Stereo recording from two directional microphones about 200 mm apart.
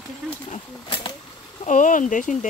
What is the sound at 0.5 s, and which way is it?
Speech, 25° left (ahead or behind).